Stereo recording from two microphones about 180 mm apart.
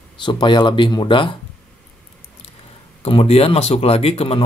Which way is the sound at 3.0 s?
35° left (ahead or behind).